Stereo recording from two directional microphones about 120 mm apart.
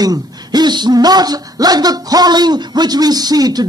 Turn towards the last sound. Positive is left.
turn(degrees=-35)  # may be behind; listen again after turning